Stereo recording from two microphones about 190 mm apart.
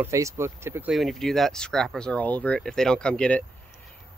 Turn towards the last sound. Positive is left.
turn(degrees=5)  # may be behind; listen again after turning